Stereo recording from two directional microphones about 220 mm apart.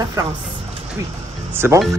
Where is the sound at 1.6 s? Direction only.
10° right (ahead or behind).